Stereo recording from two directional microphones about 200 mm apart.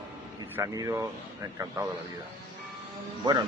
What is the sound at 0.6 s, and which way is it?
Speech, 15° right (ahead or behind).